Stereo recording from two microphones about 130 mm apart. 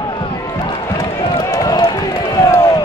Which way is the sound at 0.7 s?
30° left (ahead or behind).